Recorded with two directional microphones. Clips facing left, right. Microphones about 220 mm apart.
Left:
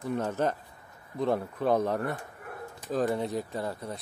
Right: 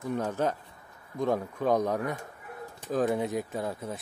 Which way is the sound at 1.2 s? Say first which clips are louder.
Even; 5° left (ahead or behind).